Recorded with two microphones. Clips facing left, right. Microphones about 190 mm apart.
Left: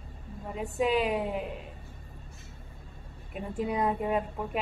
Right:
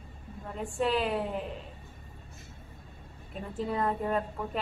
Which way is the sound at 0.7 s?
10° left (ahead or behind).